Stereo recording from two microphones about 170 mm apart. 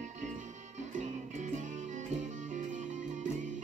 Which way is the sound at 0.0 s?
45° right (ahead or behind).